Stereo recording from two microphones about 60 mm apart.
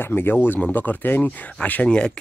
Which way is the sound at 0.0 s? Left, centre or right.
Left.